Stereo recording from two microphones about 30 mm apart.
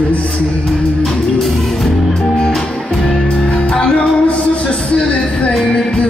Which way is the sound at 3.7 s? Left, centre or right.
Left.